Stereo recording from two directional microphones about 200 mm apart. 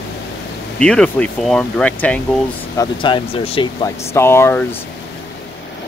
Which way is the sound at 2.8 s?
25° left (ahead or behind).